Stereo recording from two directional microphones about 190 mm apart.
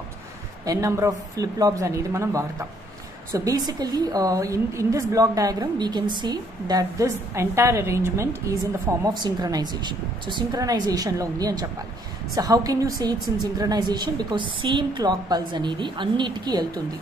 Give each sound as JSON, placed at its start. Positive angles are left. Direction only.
{"t": 0.7, "sound": "a woman's voice", "side_deg": -15}